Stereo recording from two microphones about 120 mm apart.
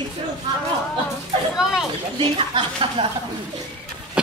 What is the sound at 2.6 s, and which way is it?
Speech, 50° right (ahead or behind).